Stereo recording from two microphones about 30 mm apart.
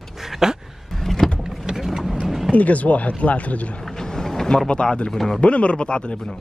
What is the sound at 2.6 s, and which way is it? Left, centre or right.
Speech, left.